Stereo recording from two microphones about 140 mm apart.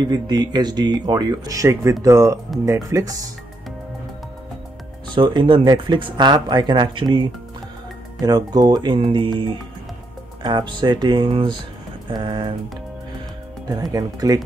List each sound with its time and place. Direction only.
0.0 s speech: 30° right (ahead or behind)
5.0 s speech: 35° right (ahead or behind)
13.7 s speech: 25° right (ahead or behind)